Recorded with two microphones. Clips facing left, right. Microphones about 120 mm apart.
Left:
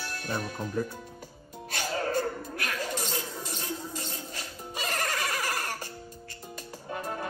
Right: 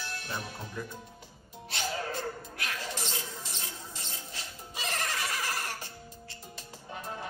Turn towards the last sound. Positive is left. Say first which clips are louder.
# left 5 dB
turn(degrees=50)  # may be behind; listen again after turning